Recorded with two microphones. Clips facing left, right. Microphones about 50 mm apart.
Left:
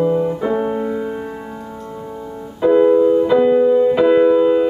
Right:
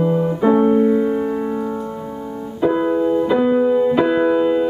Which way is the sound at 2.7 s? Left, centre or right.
Centre.